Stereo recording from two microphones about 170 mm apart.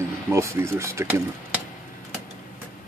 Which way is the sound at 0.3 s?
15° right (ahead or behind).